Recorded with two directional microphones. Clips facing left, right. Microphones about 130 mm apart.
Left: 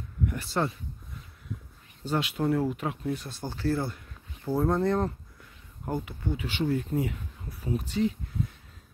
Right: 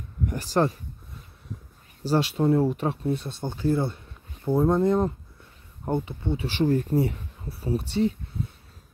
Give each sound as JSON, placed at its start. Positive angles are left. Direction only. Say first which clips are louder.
{"t": 0.3, "sound": "speech", "louder": "right 7 dB", "side_deg": -40}
{"t": 2.0, "sound": "speech", "louder": "right 5 dB", "side_deg": -35}
{"t": 5.9, "sound": "speech", "louder": "right 5 dB", "side_deg": -25}